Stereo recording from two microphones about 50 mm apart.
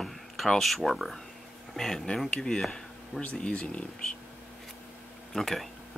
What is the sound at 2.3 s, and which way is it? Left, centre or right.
Speech, centre.